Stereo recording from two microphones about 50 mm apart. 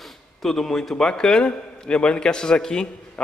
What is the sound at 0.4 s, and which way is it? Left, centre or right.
A man's voice, centre.